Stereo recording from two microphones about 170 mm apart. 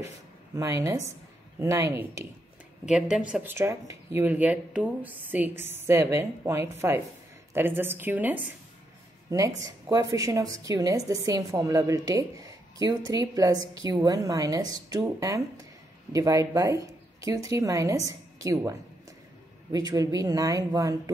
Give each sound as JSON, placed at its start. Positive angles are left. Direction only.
{"t": 0.6, "sound": "speech", "side_deg": -20}
{"t": 2.8, "sound": "speech", "side_deg": -5}
{"t": 9.6, "sound": "a woman's voice", "side_deg": -20}